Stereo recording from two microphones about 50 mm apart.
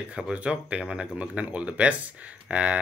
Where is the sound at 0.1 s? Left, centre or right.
Right.